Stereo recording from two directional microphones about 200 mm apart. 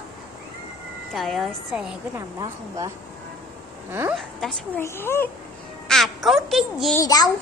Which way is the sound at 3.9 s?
10° right (ahead or behind).